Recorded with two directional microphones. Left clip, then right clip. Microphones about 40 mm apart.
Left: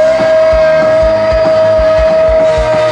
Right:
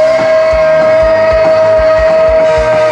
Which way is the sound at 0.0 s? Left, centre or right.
Centre.